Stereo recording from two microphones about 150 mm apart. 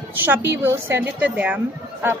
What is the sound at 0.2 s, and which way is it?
A woman's voice, 15° right (ahead or behind).